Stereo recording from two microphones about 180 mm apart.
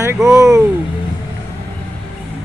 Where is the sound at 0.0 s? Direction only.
15° right (ahead or behind).